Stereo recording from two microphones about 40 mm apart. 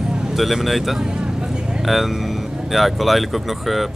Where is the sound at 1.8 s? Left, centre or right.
Centre.